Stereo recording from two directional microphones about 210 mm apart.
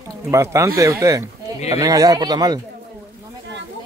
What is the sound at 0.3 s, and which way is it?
A woman's voice, 15° right (ahead or behind).